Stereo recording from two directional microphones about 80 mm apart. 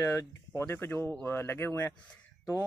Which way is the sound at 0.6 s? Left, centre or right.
Left.